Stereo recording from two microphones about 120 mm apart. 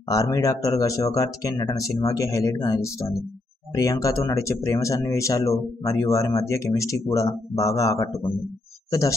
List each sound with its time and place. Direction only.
0.1 s speech: 30° left (ahead or behind)